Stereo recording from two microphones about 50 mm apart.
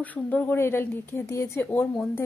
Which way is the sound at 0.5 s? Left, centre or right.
Left.